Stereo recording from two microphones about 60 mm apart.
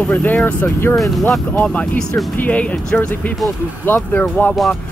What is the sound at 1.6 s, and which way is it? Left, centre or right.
Speech, left.